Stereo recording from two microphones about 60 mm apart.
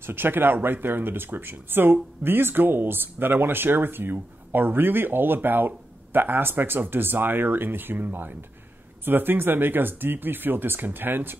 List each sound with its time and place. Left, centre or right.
0.0 s speech: right